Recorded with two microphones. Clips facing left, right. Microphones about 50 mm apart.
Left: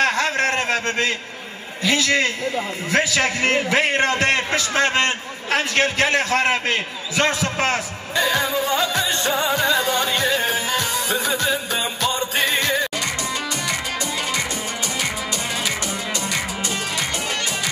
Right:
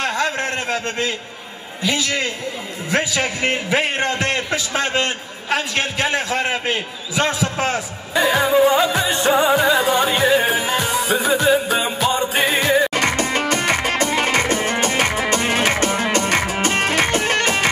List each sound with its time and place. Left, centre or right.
0.0 s a sound: left
2.9 s a man's voice: right
4.1 s a man's voice: left
8.1 s music: centre
12.9 s music: right